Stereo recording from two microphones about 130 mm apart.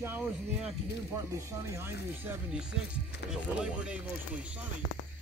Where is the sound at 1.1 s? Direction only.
20° right (ahead or behind).